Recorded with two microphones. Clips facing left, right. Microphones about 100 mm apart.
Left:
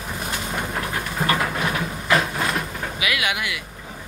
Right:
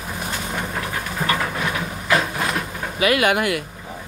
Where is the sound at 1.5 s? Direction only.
Centre (ahead or behind).